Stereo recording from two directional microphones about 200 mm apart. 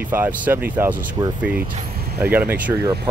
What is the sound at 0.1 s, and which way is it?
Speech, 10° right (ahead or behind).